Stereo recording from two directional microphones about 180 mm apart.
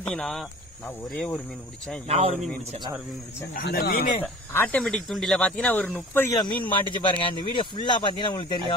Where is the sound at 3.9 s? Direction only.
45° left (ahead or behind).